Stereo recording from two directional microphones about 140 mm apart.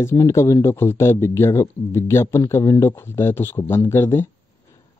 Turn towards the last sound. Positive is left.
turn(degrees=20)  # may be behind; listen again after turning